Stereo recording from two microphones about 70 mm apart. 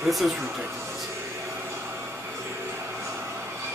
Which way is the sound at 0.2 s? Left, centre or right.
Centre.